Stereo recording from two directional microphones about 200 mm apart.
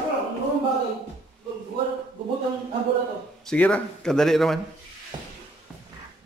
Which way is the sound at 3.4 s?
5° left (ahead or behind).